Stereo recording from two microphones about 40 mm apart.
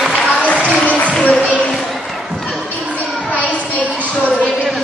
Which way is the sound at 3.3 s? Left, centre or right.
Left.